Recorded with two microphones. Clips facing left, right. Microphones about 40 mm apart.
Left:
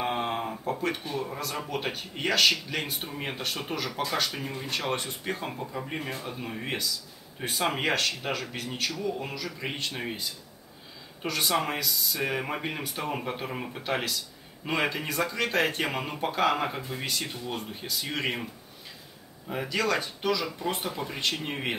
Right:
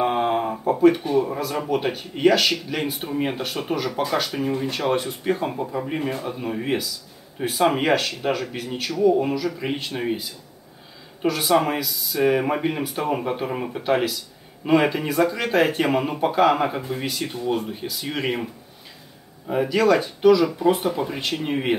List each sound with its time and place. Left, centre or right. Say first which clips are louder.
0.0 s speech: right 8 dB; centre
19.5 s speech: right 9 dB; centre